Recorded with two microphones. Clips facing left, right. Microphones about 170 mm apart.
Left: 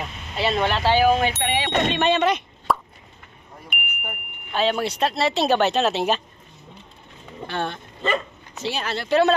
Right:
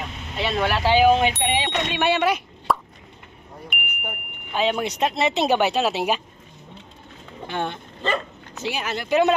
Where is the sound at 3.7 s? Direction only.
Centre (ahead or behind).